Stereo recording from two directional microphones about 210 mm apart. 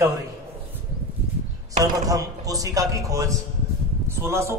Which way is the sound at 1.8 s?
15° right (ahead or behind).